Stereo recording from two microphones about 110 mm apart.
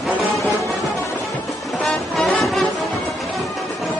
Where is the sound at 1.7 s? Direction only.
5° left (ahead or behind).